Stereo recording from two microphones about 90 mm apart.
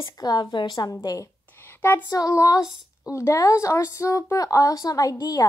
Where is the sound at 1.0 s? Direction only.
40° left (ahead or behind).